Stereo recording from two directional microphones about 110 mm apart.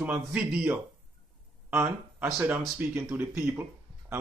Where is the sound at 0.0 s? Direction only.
15° right (ahead or behind).